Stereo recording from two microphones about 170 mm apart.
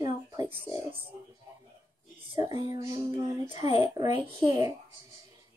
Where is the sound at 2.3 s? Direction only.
25° right (ahead or behind).